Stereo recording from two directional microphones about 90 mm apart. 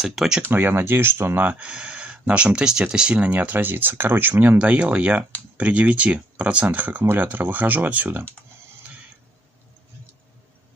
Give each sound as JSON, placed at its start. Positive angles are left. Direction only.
{"t": 0.0, "sound": "speech", "side_deg": -5}
{"t": 0.4, "sound": "speech", "side_deg": -20}